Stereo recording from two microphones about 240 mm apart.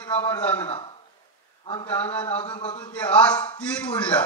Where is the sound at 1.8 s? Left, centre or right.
Centre.